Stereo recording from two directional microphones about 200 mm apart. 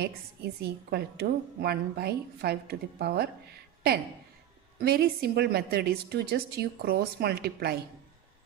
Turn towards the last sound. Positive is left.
turn(degrees=-50)  # may be behind; listen again after turning